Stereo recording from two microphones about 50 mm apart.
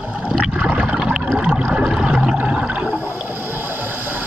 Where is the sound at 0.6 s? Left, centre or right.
Right.